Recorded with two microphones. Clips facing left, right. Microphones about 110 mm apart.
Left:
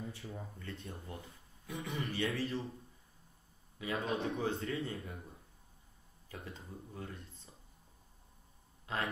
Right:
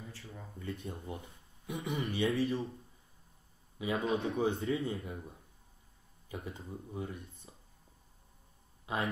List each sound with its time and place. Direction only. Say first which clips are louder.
0.0 s speech: left 4 dB; 25° left (ahead or behind)
1.0 s speech: right 4 dB; 20° right (ahead or behind)
3.7 s speech: right 4 dB; 20° right (ahead or behind)
7.5 s a sound: right 3 dB; 15° right (ahead or behind)
8.9 s a man's voice: right 3 dB; 15° right (ahead or behind)